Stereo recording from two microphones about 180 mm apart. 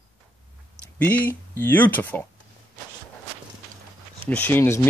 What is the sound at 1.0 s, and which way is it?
Speech, 10° left (ahead or behind).